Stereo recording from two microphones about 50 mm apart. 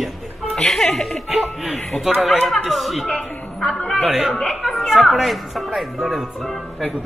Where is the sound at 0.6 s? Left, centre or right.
Centre.